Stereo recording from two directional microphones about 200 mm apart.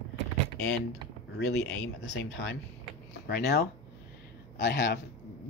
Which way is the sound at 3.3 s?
55° left (ahead or behind).